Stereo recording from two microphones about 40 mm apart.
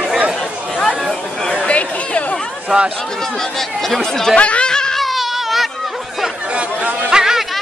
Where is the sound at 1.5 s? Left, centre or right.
Left.